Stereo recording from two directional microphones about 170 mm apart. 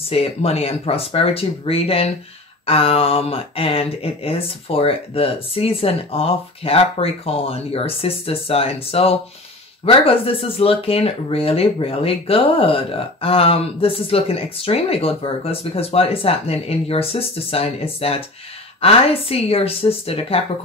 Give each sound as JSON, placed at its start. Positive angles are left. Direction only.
{"t": 0.1, "sound": "speech", "side_deg": 35}